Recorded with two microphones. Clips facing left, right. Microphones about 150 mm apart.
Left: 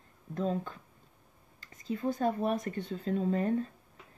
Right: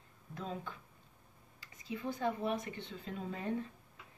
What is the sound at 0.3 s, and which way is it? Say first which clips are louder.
Speech: left 10 dB; 40° left (ahead or behind).